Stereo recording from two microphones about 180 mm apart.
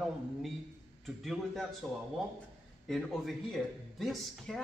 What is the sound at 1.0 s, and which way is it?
Speech, centre (ahead or behind).